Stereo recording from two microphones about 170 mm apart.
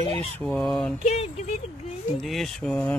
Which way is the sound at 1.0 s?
40° left (ahead or behind).